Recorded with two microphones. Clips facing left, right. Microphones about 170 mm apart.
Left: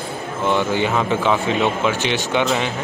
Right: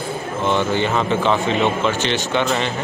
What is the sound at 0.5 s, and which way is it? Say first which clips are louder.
Speech: even; 10° left (ahead or behind).